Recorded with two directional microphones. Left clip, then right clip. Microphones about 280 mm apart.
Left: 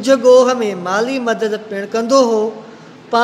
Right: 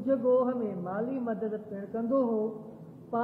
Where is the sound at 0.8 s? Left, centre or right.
Left.